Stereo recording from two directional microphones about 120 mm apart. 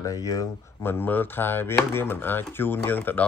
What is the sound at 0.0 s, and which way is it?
Speech, 30° left (ahead or behind).